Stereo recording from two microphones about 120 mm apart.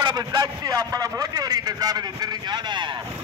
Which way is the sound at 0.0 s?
35° right (ahead or behind).